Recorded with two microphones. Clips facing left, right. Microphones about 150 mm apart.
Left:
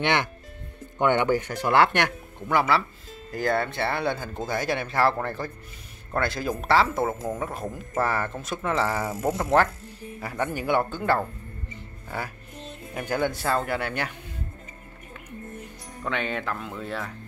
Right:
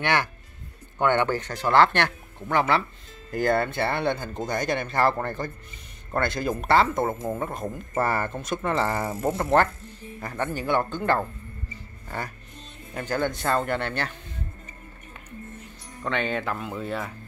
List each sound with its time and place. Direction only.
0.0 s speech: 20° left (ahead or behind)
2.4 s speech: 5° left (ahead or behind)
12.9 s speech: 10° left (ahead or behind)
16.0 s speech: centre (ahead or behind)